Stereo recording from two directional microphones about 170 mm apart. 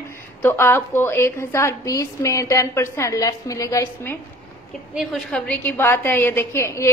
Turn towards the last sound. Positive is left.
turn(degrees=15)  # may be behind; listen again after turning